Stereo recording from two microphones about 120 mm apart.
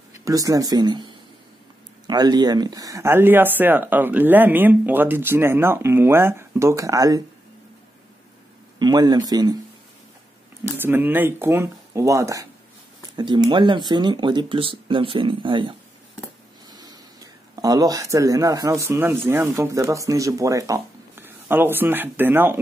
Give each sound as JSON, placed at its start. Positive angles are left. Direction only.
{"t": 0.1, "sound": "speech", "side_deg": -30}
{"t": 8.7, "sound": "speech", "side_deg": -35}
{"t": 10.8, "sound": "speech", "side_deg": -20}
{"t": 13.1, "sound": "speech", "side_deg": -40}
{"t": 16.7, "sound": "speech", "side_deg": -35}